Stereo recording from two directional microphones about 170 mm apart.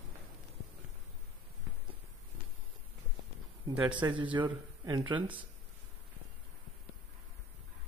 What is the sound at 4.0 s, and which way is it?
Speech, 30° right (ahead or behind).